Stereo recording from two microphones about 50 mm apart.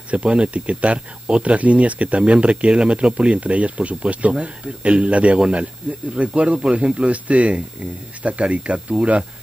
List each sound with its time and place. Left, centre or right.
0.1 s speech: right